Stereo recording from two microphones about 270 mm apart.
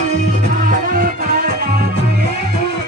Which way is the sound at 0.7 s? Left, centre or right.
Right.